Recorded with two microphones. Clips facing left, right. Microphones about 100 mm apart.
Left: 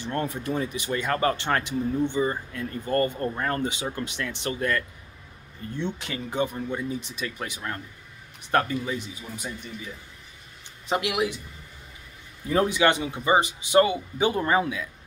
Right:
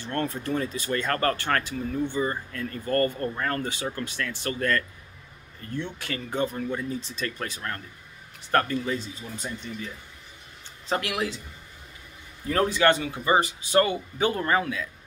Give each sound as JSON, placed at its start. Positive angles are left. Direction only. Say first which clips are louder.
{"t": 0.0, "sound": "speech", "louder": "even", "side_deg": 15}
{"t": 10.9, "sound": "speech", "louder": "left 2 dB", "side_deg": 15}
{"t": 12.4, "sound": "speech", "louder": "even", "side_deg": 15}